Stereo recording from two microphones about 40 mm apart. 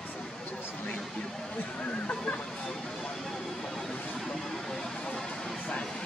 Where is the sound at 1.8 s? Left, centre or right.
Left.